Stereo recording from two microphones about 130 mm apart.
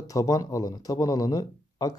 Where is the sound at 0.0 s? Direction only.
25° left (ahead or behind).